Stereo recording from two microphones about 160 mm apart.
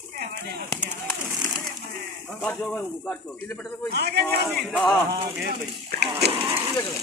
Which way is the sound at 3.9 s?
90° right.